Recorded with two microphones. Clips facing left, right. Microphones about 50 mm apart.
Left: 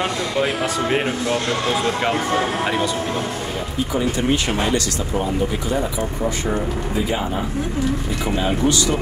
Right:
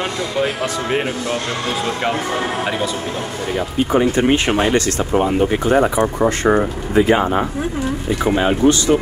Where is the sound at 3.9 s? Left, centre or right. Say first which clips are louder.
Right 6 dB; right.